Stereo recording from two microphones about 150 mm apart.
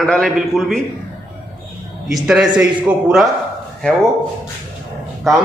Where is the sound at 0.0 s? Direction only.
5° left (ahead or behind).